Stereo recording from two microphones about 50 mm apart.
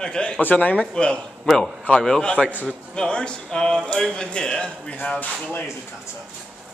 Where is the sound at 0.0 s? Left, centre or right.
Centre.